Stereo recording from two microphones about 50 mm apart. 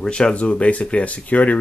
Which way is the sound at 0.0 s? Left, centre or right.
Centre.